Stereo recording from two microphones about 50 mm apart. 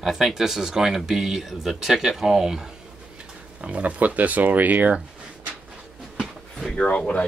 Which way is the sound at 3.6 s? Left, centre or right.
Right.